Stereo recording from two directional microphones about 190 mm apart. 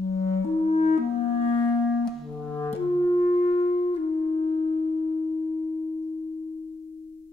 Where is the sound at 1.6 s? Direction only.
5° left (ahead or behind).